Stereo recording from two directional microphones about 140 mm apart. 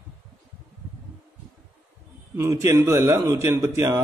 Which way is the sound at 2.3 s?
20° right (ahead or behind).